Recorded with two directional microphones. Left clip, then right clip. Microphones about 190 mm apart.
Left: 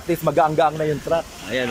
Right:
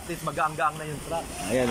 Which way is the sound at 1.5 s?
5° right (ahead or behind).